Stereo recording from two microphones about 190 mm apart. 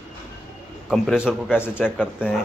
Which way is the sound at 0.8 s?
Centre (ahead or behind).